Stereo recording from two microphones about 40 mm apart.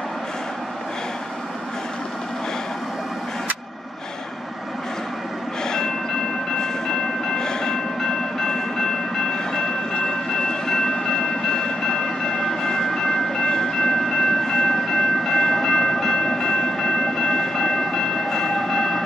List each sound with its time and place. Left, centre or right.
5.7 s vehicle: centre
6.5 s train: centre